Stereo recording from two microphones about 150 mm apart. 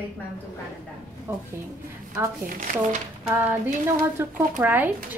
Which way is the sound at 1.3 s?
15° right (ahead or behind).